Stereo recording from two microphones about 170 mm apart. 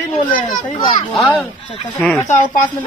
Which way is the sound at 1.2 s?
5° left (ahead or behind).